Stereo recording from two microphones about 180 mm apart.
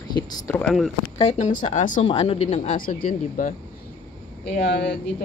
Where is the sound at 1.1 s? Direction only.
40° left (ahead or behind).